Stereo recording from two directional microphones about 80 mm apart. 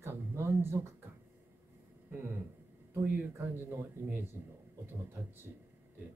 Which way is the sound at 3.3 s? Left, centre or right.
Right.